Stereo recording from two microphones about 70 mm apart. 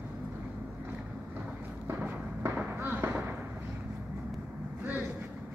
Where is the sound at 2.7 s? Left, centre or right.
Right.